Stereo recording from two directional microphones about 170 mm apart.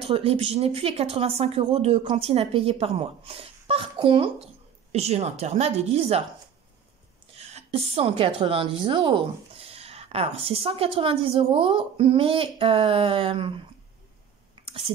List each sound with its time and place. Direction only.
0.0 s a woman's voice: 35° right (ahead or behind)
7.3 s a woman's voice: 40° right (ahead or behind)
14.5 s a sound: 30° right (ahead or behind)